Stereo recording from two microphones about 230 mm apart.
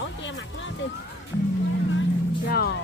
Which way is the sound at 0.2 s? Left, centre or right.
Left.